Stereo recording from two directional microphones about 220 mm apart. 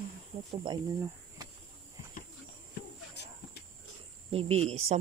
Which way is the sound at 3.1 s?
50° left (ahead or behind).